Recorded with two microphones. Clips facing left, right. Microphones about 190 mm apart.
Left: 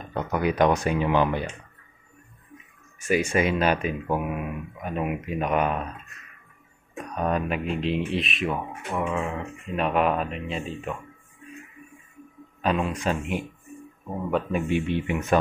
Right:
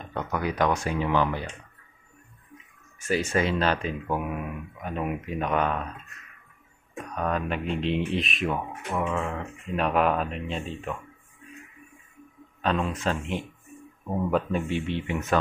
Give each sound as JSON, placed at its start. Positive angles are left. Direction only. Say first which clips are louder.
{"t": 0.1, "sound": "speech", "louder": "left 4 dB", "side_deg": 15}
{"t": 3.0, "sound": "speech", "louder": "left 2 dB", "side_deg": 10}
{"t": 7.2, "sound": "speech", "louder": "left 2 dB", "side_deg": 15}
{"t": 12.6, "sound": "speech", "louder": "left 2 dB", "side_deg": 10}